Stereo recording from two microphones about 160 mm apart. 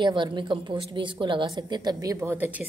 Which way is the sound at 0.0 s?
30° right (ahead or behind).